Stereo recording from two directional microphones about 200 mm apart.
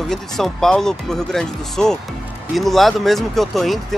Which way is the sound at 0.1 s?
Centre (ahead or behind).